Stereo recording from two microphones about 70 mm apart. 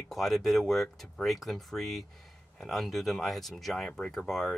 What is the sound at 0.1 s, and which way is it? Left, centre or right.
Speech, centre.